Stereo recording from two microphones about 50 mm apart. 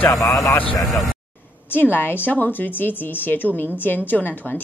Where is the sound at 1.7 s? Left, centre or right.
Left.